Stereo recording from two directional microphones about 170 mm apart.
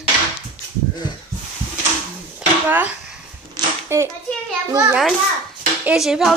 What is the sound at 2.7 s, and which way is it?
Speech, 10° right (ahead or behind).